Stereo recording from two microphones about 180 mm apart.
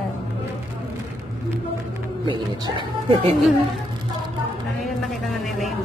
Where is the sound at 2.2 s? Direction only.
25° right (ahead or behind).